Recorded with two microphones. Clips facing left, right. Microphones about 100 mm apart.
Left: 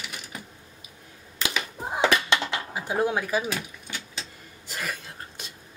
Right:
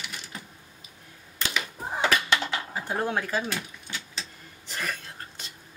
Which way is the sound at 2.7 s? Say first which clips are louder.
Left 5 dB; 15° left (ahead or behind).